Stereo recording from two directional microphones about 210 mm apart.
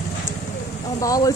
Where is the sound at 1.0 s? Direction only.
15° left (ahead or behind).